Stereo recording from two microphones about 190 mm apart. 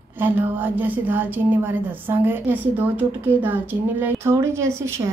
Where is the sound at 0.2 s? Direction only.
10° right (ahead or behind).